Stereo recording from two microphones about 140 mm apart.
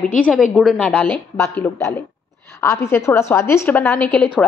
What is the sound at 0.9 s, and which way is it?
A woman's voice, 10° left (ahead or behind).